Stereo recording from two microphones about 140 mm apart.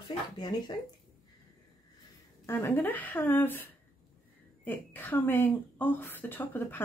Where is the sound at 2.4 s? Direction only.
15° left (ahead or behind).